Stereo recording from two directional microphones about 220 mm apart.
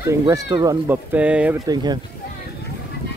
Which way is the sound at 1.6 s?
20° right (ahead or behind).